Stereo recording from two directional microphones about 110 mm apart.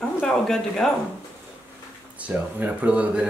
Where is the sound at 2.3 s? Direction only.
20° right (ahead or behind).